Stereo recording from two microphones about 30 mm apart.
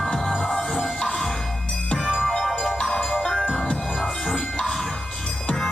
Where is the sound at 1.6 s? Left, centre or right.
Left.